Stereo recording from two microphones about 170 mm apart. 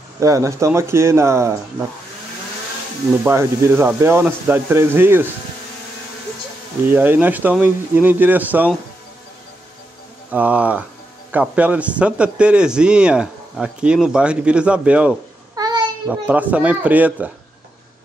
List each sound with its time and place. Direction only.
0.2 s speech: 20° right (ahead or behind)
3.3 s speech: 15° right (ahead or behind)
6.9 s speech: 10° right (ahead or behind)
10.3 s speech: 10° right (ahead or behind)
15.5 s a sound: 25° right (ahead or behind)
16.1 s speech: 10° right (ahead or behind)